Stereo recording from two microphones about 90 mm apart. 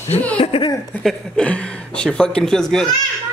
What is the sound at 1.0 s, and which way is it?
Speech, 10° left (ahead or behind).